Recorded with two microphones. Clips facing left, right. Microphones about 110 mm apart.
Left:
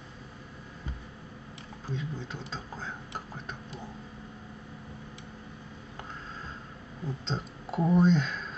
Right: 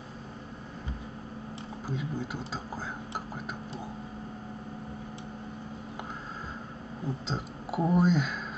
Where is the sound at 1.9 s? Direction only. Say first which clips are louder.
Right 2 dB; 10° right (ahead or behind).